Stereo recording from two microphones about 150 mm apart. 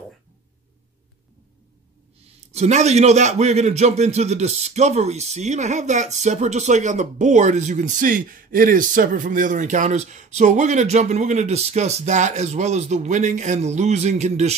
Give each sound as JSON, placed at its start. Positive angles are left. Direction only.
{"t": 2.5, "sound": "a man's voice", "side_deg": -50}